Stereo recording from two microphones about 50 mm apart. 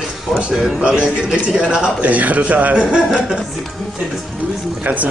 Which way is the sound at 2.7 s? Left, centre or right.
Centre.